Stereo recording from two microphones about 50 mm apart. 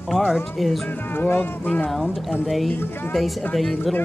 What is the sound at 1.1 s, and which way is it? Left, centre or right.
Speech, left.